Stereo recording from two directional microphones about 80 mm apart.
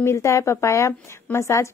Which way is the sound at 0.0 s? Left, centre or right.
Left.